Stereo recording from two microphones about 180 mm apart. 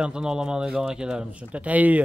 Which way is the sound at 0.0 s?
5° right (ahead or behind).